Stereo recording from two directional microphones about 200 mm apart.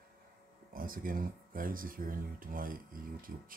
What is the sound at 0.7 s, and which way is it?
Speech, 45° right (ahead or behind).